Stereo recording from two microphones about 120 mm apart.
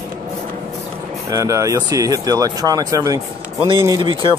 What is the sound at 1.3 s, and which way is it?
Speech, 25° right (ahead or behind).